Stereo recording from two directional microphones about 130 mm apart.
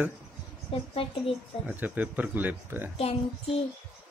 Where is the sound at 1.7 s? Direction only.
15° right (ahead or behind).